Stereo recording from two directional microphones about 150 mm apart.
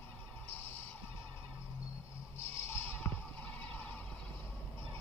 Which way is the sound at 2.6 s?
15° left (ahead or behind).